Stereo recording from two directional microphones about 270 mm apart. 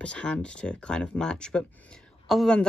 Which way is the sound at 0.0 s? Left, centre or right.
Centre.